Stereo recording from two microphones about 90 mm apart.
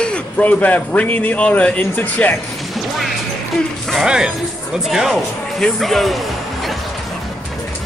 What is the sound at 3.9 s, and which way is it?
Speech, 5° right (ahead or behind).